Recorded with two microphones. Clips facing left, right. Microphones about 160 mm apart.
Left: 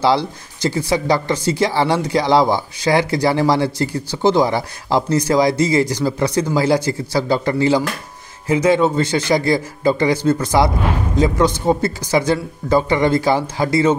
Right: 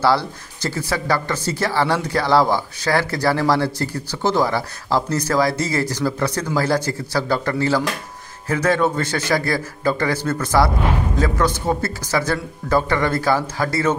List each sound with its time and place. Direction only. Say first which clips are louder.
0.0 s speech: left 2 dB; 15° left (ahead or behind)